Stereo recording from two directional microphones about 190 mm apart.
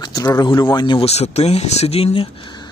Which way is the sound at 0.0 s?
20° left (ahead or behind).